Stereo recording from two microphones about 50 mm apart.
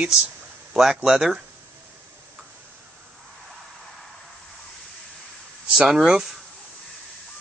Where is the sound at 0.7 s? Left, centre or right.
Centre.